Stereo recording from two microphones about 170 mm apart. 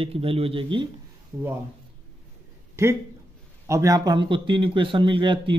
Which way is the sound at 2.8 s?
15° right (ahead or behind).